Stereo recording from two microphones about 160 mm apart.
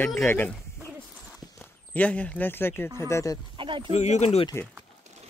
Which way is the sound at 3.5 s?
30° right (ahead or behind).